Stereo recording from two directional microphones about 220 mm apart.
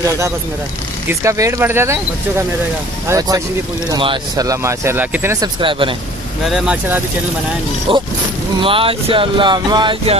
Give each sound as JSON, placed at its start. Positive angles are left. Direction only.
{"t": 1.0, "sound": "speech", "side_deg": -15}
{"t": 5.6, "sound": "speech", "side_deg": -25}
{"t": 6.4, "sound": "speech", "side_deg": 0}
{"t": 7.9, "sound": "speech", "side_deg": -25}